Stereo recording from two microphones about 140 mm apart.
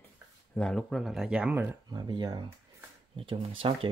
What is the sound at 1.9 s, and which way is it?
Speech, 30° right (ahead or behind).